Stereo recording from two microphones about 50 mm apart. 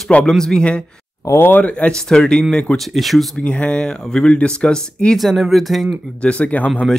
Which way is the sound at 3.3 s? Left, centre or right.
Left.